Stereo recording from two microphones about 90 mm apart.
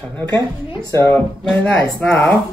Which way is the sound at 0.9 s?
30° left (ahead or behind).